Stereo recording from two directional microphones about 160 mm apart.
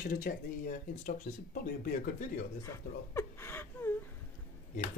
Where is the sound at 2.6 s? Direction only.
15° left (ahead or behind).